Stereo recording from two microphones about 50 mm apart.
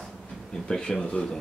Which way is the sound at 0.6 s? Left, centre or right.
Centre.